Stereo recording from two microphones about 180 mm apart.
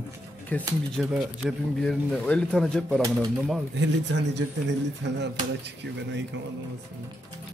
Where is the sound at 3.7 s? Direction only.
80° right.